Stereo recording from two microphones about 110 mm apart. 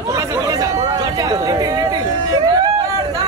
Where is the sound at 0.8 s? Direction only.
35° right (ahead or behind).